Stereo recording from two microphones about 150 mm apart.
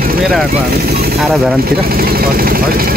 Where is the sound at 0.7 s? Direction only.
90° right.